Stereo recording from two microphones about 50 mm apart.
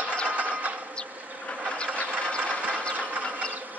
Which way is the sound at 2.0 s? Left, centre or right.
Left.